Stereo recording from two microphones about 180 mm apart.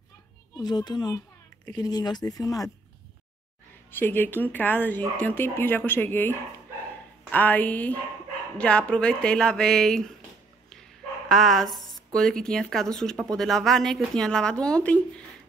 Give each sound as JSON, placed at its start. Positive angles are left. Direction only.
{"t": 0.6, "sound": "speech", "side_deg": 20}
{"t": 3.9, "sound": "speech", "side_deg": 10}
{"t": 11.2, "sound": "speech", "side_deg": 0}